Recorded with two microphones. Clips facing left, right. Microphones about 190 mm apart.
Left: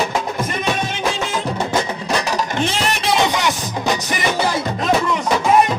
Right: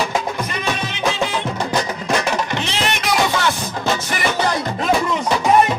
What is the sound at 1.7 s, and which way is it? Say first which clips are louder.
Music: even; 30° left (ahead or behind).